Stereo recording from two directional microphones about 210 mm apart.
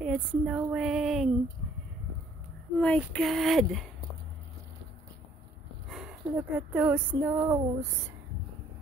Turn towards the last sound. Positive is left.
turn(degrees=-10)  # may be behind; listen again after turning